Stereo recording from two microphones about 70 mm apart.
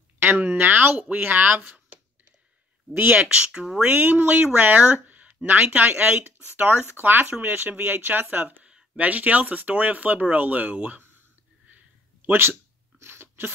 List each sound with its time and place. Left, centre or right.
0.2 s speech: right
2.9 s speech: right
3.9 s speech: right
8.6 s speech: centre
11.7 s a sound: right